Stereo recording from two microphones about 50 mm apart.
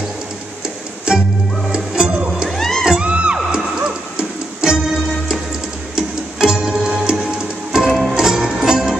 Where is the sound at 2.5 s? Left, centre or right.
Centre.